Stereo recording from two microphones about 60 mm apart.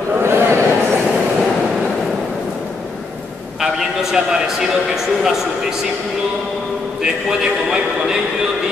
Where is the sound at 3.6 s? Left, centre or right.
Centre.